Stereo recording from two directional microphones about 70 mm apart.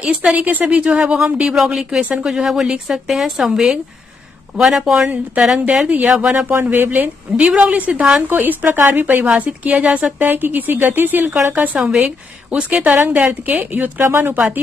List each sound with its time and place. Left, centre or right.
0.0 s speech: centre
5.1 s a woman's voice: centre
6.5 s a woman's voice: right
14.0 s speech: right